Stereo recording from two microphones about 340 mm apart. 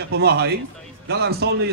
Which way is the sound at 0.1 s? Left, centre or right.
Right.